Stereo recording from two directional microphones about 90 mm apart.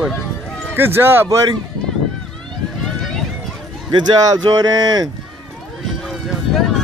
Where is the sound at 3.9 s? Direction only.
45° right (ahead or behind).